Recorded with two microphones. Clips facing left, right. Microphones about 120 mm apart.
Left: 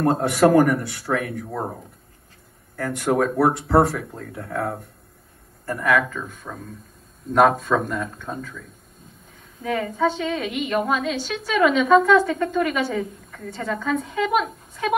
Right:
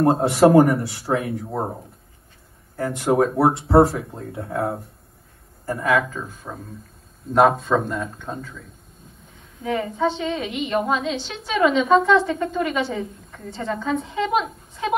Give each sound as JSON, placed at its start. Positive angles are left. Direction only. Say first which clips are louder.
{"t": 0.0, "sound": "a woman's voice", "louder": "right 2 dB", "side_deg": -25}
{"t": 2.7, "sound": "a woman's voice", "louder": "right 2 dB", "side_deg": -25}